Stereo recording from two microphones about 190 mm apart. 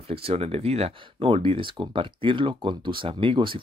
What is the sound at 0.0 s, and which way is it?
Speech, 30° right (ahead or behind).